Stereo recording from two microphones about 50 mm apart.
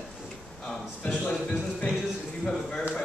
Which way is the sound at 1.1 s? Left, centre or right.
Centre.